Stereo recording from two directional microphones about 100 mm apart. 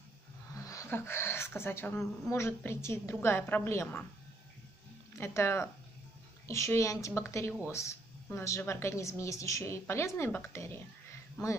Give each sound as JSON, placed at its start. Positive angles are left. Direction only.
{"t": 0.6, "sound": "a sound", "side_deg": 35}
{"t": 0.8, "sound": "a woman's voice", "side_deg": 25}
{"t": 5.1, "sound": "a woman's voice", "side_deg": 25}